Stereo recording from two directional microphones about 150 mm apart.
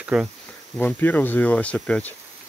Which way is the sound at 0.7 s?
10° left (ahead or behind).